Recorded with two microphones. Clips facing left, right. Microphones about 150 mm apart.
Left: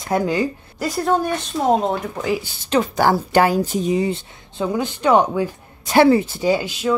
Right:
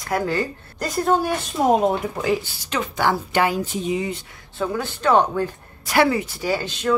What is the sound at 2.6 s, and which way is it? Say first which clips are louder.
A woman's voice: left 6 dB; 35° left (ahead or behind).